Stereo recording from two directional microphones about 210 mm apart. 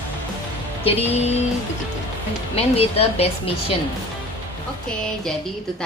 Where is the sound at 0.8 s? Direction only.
30° left (ahead or behind).